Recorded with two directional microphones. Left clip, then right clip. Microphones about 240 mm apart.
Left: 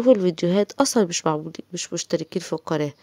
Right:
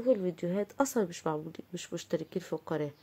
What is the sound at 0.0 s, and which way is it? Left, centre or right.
Speech, left.